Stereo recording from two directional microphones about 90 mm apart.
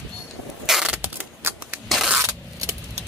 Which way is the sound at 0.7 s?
5° right (ahead or behind).